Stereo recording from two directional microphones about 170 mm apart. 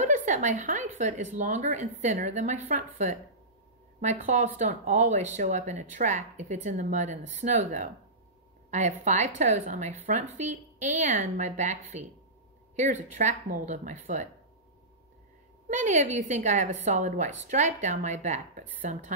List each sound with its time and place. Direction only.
0.1 s speech: 45° right (ahead or behind)
15.7 s speech: 45° right (ahead or behind)